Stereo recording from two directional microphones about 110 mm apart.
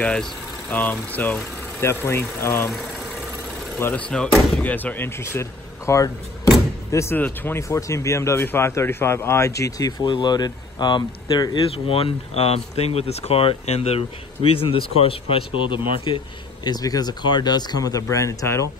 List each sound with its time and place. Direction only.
0.0 s speech: 10° left (ahead or behind)
2.7 s engine: centre (ahead or behind)
3.9 s speech: 10° left (ahead or behind); by 11.6 s 40° left (ahead or behind)
11.6 s speech: 60° left (ahead or behind)
16.6 s speech: 35° left (ahead or behind)